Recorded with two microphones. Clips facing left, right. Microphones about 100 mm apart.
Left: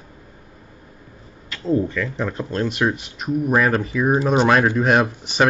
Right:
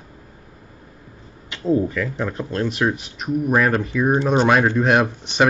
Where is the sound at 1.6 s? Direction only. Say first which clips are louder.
Right 1 dB; 10° right (ahead or behind).